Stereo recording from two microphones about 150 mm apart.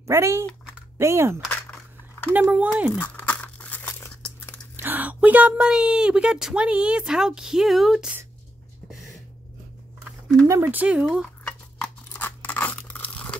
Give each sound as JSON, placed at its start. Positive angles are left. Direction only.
{"t": 0.0, "sound": "speech", "side_deg": -20}
{"t": 2.3, "sound": "speech", "side_deg": -10}
{"t": 2.9, "sound": "crumpling", "side_deg": 10}
{"t": 4.7, "sound": "speech", "side_deg": -15}
{"t": 10.5, "sound": "speech", "side_deg": -15}
{"t": 11.4, "sound": "crunch", "side_deg": 10}